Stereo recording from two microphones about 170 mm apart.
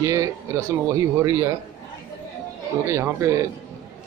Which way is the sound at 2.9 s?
15° right (ahead or behind).